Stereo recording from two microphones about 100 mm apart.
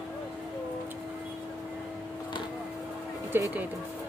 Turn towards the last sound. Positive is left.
turn(degrees=-20)  # may be behind; listen again after turning